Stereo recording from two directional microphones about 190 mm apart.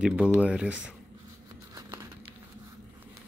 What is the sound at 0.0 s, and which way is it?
Speech, 5° right (ahead or behind).